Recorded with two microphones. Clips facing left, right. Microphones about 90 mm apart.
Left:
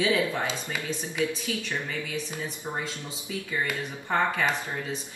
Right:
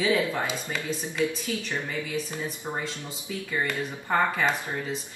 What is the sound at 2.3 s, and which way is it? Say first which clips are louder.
Speech: right 1 dB; 15° right (ahead or behind).